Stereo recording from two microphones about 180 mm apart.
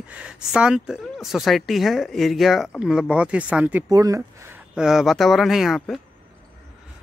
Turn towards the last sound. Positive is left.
turn(degrees=0)  # may be behind; listen again after turning